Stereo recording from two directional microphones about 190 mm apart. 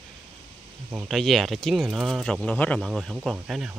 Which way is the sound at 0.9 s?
Centre (ahead or behind).